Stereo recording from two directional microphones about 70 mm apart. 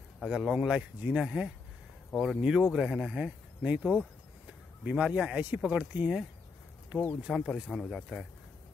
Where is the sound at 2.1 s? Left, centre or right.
Centre.